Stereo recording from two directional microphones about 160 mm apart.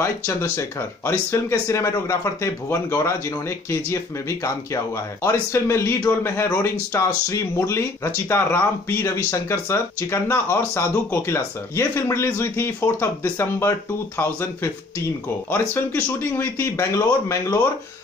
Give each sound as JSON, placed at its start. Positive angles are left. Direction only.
{"t": 0.0, "sound": "speech", "side_deg": 15}